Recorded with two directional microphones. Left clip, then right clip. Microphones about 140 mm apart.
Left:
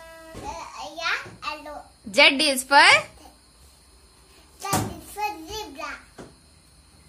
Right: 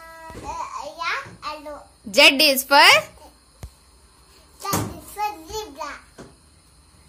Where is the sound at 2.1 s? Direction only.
10° right (ahead or behind).